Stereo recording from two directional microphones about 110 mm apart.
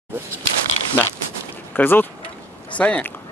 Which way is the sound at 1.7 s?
20° left (ahead or behind).